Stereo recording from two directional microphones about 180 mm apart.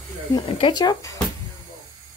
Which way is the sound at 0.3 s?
25° left (ahead or behind).